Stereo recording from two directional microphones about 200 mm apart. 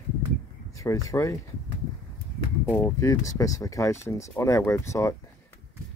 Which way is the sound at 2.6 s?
10° left (ahead or behind).